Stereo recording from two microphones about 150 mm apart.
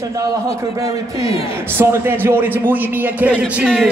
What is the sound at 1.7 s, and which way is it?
A man's voice, 15° right (ahead or behind).